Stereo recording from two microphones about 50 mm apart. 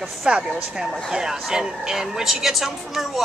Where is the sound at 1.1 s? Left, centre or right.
Centre.